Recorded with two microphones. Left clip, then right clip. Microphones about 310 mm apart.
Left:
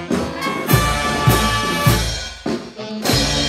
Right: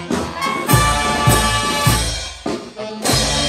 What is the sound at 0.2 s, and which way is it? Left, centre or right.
Music, right.